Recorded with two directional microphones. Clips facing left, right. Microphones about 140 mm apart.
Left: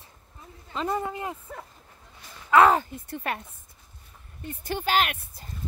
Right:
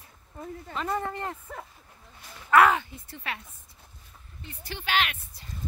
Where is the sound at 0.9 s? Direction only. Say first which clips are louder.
Even; 10° left (ahead or behind).